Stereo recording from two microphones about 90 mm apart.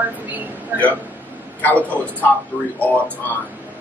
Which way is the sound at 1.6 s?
20° left (ahead or behind).